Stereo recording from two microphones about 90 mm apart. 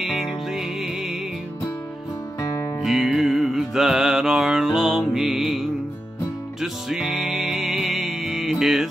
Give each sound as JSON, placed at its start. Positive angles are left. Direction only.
{"t": 0.0, "sound": "music", "side_deg": -5}
{"t": 2.4, "sound": "music", "side_deg": 45}
{"t": 2.8, "sound": "music", "side_deg": -5}